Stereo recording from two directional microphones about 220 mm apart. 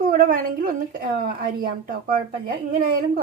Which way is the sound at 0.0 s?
40° right (ahead or behind).